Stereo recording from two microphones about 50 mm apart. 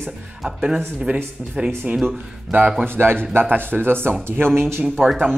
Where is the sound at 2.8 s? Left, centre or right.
Right.